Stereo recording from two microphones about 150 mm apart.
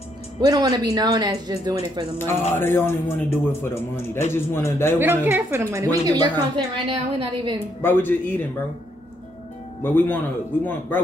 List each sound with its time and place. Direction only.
0.4 s speech: 25° right (ahead or behind)
2.1 s a man's voice: 15° left (ahead or behind)
5.2 s a woman's voice: 15° right (ahead or behind); by 7.5 s 30° right (ahead or behind)
7.8 s a man's voice: 15° left (ahead or behind)
9.8 s a man's voice: 15° left (ahead or behind)